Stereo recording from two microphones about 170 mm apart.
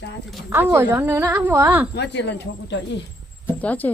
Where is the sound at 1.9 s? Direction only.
90° left.